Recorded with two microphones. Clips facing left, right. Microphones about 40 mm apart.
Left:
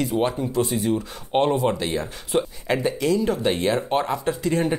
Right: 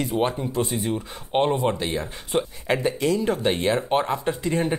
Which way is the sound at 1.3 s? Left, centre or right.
Centre.